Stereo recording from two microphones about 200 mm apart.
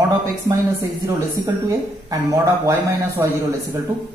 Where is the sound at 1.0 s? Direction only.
15° right (ahead or behind).